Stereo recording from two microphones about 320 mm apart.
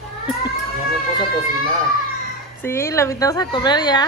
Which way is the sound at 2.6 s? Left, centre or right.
Centre.